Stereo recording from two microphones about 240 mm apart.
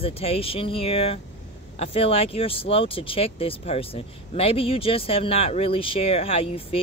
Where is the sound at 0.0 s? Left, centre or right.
Left.